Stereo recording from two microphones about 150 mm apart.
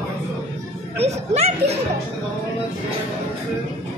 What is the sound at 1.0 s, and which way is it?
Speech, 45° right (ahead or behind).